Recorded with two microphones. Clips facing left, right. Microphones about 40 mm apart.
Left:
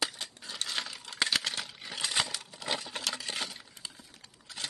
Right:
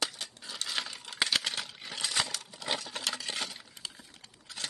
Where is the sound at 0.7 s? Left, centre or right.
Centre.